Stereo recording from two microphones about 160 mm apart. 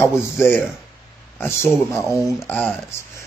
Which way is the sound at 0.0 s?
15° left (ahead or behind).